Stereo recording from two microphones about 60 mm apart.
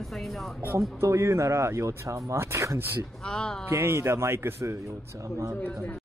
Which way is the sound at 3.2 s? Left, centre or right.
Centre.